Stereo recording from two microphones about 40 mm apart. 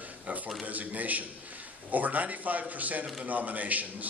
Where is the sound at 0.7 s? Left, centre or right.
Right.